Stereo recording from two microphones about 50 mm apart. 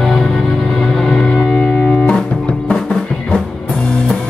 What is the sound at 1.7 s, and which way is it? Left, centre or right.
Music, left.